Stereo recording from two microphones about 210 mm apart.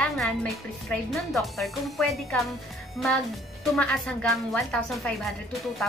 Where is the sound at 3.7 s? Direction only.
5° left (ahead or behind).